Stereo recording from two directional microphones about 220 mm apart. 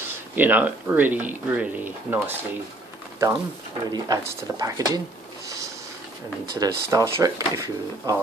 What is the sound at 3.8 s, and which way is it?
Speech, 15° right (ahead or behind).